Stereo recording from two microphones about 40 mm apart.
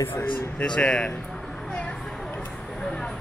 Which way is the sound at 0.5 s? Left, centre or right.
Left.